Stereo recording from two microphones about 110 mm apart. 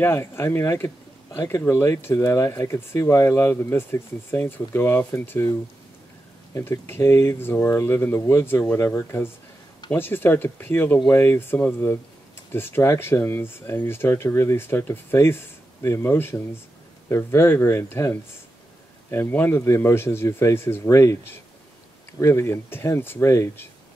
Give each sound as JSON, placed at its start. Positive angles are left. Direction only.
{"t": 0.0, "sound": "speech", "side_deg": 20}
{"t": 6.5, "sound": "speech", "side_deg": 25}